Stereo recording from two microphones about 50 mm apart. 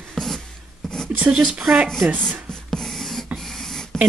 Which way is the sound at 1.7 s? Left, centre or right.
Right.